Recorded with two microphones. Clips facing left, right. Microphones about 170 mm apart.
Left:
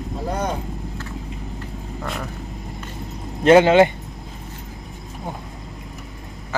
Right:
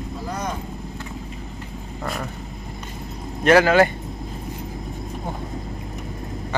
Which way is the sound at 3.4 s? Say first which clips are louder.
Left 3 dB; 25° left (ahead or behind).